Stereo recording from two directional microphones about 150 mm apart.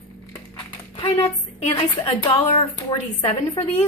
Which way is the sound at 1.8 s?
35° left (ahead or behind).